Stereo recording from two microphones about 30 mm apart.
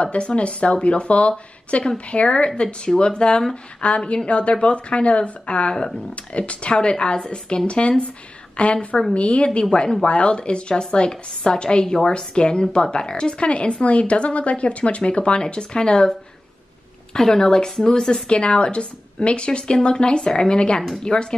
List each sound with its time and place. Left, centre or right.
0.0 s a woman's voice: left
3.8 s a woman's voice: left
17.2 s a woman's voice: left